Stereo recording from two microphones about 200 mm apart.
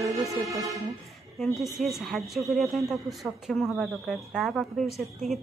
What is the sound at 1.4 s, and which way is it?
Speech, centre (ahead or behind).